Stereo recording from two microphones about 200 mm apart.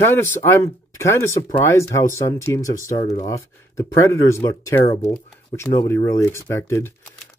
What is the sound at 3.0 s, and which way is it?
Speech, 30° left (ahead or behind).